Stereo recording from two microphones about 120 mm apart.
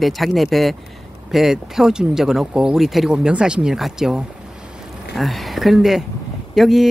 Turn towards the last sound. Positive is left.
turn(degrees=0)  # may be behind; listen again after turning